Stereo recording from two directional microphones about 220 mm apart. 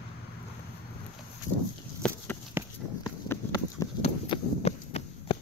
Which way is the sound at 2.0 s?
5° left (ahead or behind).